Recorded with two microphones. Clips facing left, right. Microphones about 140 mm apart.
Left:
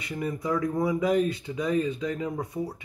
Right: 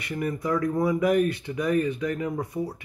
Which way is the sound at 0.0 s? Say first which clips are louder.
Right 2 dB; 65° right (ahead or behind).